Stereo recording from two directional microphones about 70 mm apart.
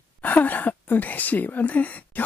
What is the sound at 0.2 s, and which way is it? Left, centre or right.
Speech, left.